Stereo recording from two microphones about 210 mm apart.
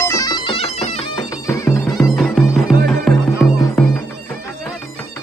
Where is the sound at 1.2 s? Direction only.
15° left (ahead or behind).